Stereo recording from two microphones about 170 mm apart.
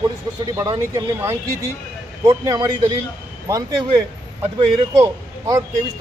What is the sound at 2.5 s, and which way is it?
Speech, 25° right (ahead or behind).